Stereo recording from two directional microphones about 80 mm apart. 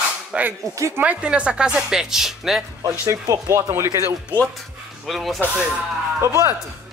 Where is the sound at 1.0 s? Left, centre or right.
Centre.